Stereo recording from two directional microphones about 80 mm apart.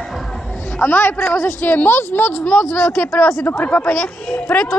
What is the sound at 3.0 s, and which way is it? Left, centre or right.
Speech, centre.